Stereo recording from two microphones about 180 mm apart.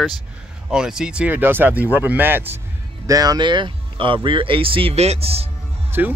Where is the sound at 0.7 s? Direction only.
5° right (ahead or behind); by 5.5 s 35° right (ahead or behind).